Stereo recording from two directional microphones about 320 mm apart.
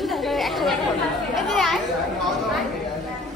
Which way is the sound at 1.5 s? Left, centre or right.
Centre.